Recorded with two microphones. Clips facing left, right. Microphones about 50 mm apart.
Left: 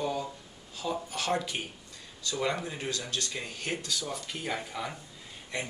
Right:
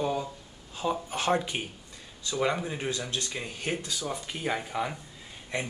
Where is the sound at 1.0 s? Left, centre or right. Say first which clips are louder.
Right 4 dB; right.